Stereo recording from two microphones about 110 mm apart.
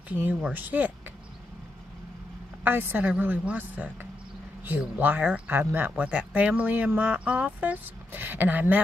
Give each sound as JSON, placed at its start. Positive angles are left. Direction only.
{"t": 0.1, "sound": "speech", "side_deg": -15}
{"t": 2.6, "sound": "speech", "side_deg": -15}